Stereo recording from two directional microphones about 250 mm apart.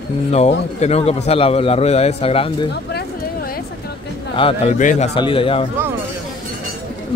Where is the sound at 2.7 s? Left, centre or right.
Left.